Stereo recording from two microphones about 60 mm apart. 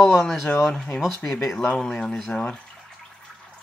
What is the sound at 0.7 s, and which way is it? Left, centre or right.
Speech, centre.